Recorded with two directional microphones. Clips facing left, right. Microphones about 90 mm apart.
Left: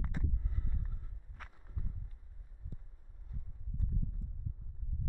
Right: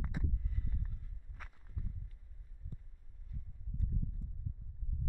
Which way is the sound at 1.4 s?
Centre (ahead or behind).